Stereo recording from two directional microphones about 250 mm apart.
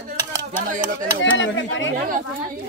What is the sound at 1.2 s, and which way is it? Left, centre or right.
Speech, left.